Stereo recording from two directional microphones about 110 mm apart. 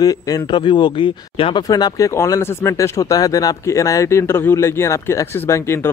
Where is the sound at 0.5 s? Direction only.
45° left (ahead or behind).